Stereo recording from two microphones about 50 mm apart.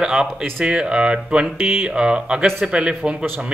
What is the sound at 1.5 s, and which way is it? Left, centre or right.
Speech, right.